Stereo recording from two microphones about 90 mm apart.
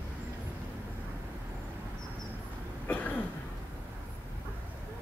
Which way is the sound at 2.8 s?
15° left (ahead or behind).